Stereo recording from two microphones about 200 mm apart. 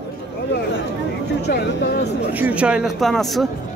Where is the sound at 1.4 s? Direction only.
55° left (ahead or behind).